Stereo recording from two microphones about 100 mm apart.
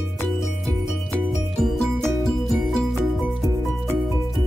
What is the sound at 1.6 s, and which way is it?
Music, centre (ahead or behind).